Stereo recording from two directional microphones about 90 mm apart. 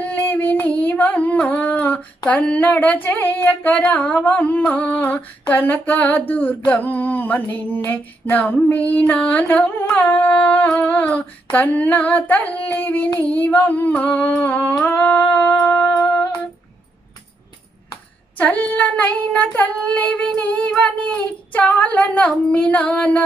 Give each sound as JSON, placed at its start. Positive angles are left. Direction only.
{"t": 0.0, "sound": "female singing", "side_deg": 20}
{"t": 5.5, "sound": "a sound", "side_deg": 20}
{"t": 15.6, "sound": "music", "side_deg": 20}
{"t": 18.4, "sound": "female singing", "side_deg": 15}